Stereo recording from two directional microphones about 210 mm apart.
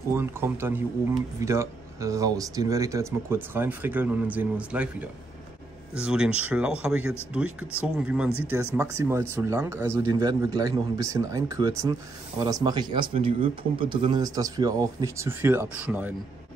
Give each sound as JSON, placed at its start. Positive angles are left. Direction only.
{"t": 0.1, "sound": "a man's voice", "side_deg": -10}